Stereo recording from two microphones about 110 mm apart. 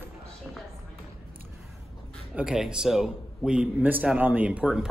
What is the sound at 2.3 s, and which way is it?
A man's voice, 5° right (ahead or behind).